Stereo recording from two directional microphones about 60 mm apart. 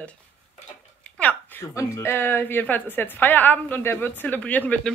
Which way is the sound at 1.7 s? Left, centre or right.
Left.